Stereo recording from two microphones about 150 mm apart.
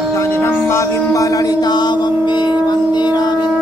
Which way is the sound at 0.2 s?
15° left (ahead or behind).